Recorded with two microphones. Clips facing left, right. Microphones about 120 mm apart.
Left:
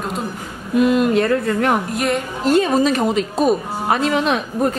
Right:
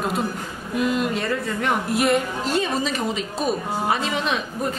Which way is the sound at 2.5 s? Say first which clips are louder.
Left 9 dB; 55° left (ahead or behind).